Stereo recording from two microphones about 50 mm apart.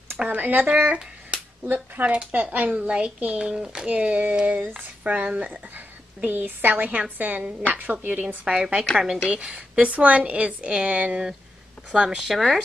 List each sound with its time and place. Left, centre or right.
0.2 s speech: right
2.8 s a woman's voice: right
6.2 s speech: right
8.5 s a woman's voice: centre
12.2 s speech: centre